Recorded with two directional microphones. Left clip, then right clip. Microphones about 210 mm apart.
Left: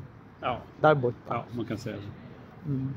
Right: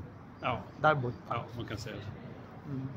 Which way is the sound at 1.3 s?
40° left (ahead or behind).